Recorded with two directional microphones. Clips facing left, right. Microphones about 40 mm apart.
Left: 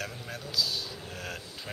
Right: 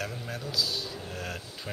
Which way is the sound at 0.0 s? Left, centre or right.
Centre.